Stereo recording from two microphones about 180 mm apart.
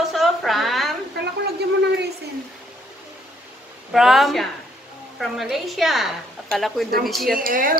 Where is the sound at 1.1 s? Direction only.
65° right (ahead or behind).